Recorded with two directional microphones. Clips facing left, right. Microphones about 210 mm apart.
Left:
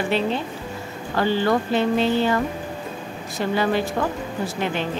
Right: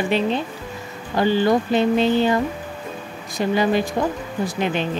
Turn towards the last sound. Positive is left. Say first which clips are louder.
# right 2 dB
turn(degrees=-20)  # may be behind; listen again after turning